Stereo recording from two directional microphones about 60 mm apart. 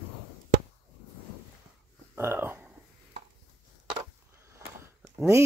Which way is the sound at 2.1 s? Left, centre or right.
Right.